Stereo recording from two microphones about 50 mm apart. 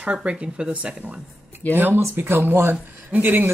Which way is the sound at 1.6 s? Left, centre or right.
Left.